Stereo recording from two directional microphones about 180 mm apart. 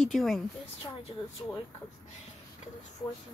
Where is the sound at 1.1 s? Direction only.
25° left (ahead or behind).